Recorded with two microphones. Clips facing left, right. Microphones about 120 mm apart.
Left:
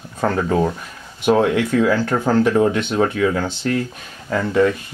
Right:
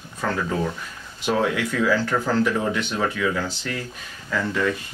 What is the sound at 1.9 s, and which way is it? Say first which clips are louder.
Speech: left 4 dB; 50° left (ahead or behind).